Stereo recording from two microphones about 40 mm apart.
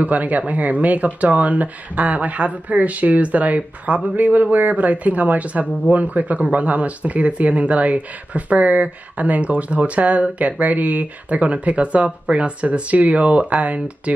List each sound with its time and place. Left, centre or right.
0.0 s speech: right